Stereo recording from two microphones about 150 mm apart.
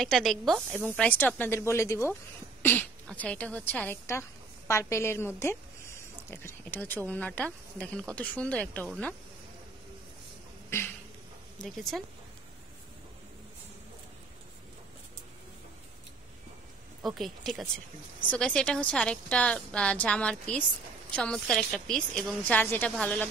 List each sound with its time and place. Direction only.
0.0 s a woman's voice: centre (ahead or behind)
11.5 s speech: centre (ahead or behind)
17.0 s a woman's voice: centre (ahead or behind)